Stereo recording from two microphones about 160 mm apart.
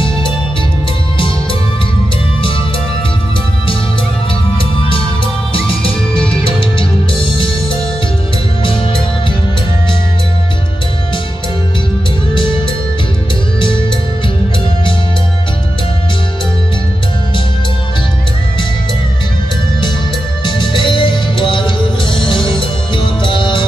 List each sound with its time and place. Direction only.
5.5 s music: 35° left (ahead or behind)
20.4 s music: 30° left (ahead or behind)